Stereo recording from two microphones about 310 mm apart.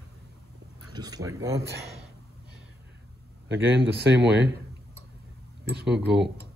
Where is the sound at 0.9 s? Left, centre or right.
Centre.